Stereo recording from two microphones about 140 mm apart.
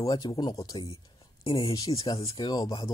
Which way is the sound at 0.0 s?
30° left (ahead or behind).